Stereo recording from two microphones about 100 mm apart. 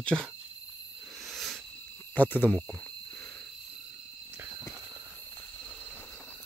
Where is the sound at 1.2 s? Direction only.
Centre (ahead or behind).